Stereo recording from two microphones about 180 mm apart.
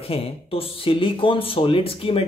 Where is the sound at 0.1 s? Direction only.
30° left (ahead or behind).